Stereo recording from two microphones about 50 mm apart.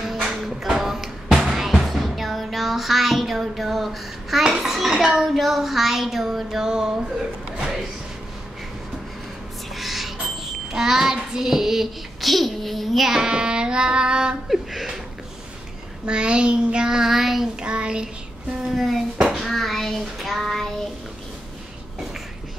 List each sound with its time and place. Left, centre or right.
0.0 s music: centre
5.2 s a sound: centre
9.8 s child singing: centre
14.5 s speech: centre
16.1 s child singing: centre
17.6 s child singing: centre
18.7 s speech: centre
19.3 s hands: centre